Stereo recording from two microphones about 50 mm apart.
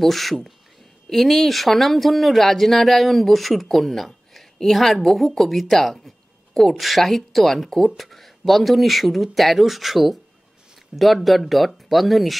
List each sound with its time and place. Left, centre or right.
0.0 s a woman's voice: centre